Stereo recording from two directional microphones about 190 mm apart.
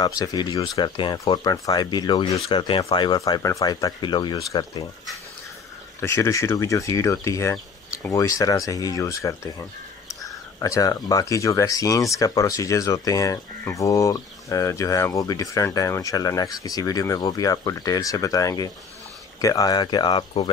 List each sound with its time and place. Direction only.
0.0 s speech: 20° left (ahead or behind)
5.9 s speech: 15° left (ahead or behind)